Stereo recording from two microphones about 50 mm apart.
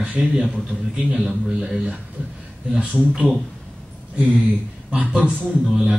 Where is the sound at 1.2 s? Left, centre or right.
Centre.